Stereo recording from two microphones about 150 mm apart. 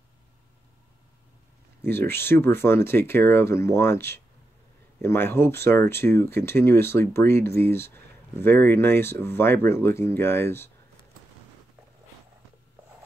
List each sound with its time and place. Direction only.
1.8 s speech: 15° left (ahead or behind)